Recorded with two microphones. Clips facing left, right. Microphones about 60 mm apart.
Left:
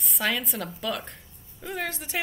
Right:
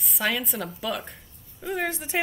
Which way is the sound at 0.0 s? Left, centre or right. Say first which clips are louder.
Right 1 dB; centre.